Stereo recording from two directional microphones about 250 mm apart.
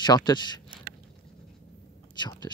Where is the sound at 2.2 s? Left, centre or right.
Centre.